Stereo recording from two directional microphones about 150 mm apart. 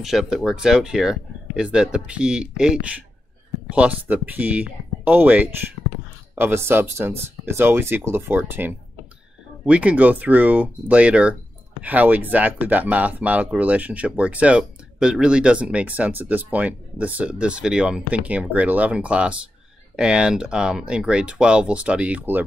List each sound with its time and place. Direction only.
0.0 s speech: 5° right (ahead or behind)